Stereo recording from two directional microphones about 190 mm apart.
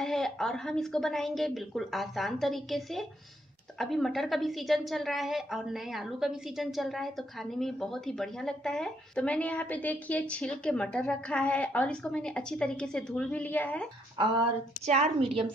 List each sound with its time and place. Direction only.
0.0 s a woman's voice: centre (ahead or behind)
14.1 s a woman's voice: 25° right (ahead or behind)